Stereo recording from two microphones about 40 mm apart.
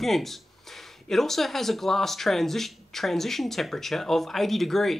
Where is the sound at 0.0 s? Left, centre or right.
Centre.